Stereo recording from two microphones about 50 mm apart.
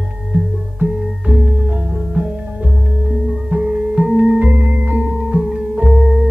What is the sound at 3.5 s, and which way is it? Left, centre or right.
Music, right.